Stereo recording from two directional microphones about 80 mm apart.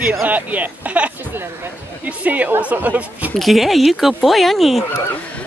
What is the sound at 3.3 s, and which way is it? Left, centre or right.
Speech, centre.